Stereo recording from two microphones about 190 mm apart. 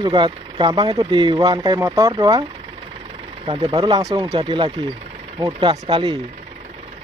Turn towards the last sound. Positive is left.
turn(degrees=-25)  # may be behind; listen again after turning